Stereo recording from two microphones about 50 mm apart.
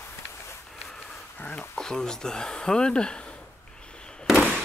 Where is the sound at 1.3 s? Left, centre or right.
Left.